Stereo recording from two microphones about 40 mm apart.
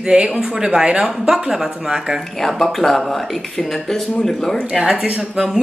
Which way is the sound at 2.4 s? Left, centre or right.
Centre.